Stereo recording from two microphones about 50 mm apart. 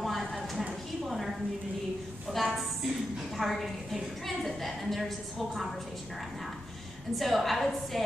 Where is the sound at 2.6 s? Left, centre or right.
Centre.